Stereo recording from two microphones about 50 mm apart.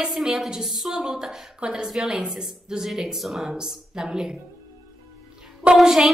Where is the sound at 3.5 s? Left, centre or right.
Centre.